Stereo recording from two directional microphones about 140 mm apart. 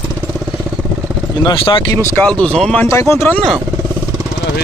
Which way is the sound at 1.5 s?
35° left (ahead or behind).